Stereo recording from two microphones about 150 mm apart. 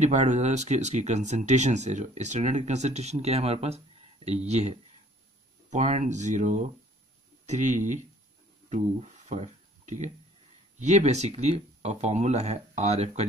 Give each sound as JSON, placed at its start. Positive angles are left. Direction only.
{"t": 0.0, "sound": "speech", "side_deg": -50}
{"t": 8.6, "sound": "a sound", "side_deg": -50}
{"t": 10.8, "sound": "speech", "side_deg": -50}